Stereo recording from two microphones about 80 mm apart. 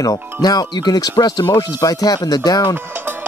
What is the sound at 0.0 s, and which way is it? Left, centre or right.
Speech, left.